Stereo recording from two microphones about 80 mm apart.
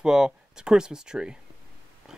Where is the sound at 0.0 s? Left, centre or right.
Centre.